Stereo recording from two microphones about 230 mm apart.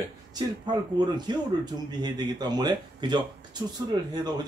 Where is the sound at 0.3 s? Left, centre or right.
Centre.